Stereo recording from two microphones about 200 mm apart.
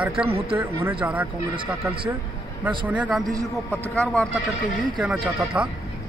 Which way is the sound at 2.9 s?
5° right (ahead or behind).